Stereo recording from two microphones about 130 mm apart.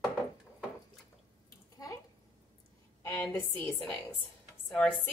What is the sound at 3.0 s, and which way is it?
A woman's voice, 20° left (ahead or behind).